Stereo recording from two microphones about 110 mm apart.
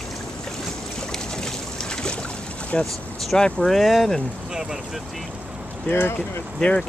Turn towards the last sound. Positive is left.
turn(degrees=10)  # may be behind; listen again after turning